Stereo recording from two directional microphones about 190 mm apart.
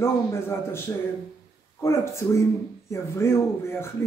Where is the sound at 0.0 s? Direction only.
15° left (ahead or behind).